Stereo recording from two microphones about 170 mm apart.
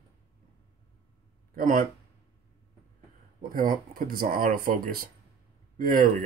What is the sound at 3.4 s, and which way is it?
Speech, 55° right (ahead or behind).